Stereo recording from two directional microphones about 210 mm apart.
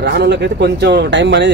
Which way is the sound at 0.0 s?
55° right (ahead or behind).